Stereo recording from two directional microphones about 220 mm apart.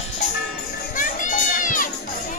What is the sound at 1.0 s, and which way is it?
Children playing, 35° left (ahead or behind).